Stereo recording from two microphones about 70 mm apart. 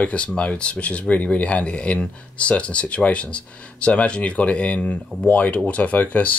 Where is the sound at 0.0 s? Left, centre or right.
Centre.